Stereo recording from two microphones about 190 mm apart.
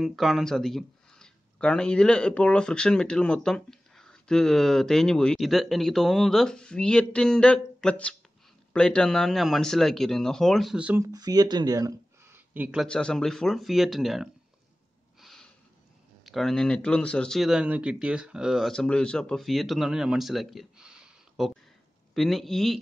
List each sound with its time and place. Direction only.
0.0 s speech: centre (ahead or behind)
11.1 s speech: 20° right (ahead or behind)
12.5 s a man's voice: 5° right (ahead or behind)
12.8 s speech: 5° left (ahead or behind)
15.1 s snort: centre (ahead or behind)
16.3 s speech: centre (ahead or behind)